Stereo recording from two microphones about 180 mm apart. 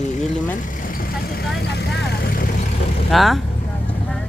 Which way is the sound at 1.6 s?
70° left (ahead or behind).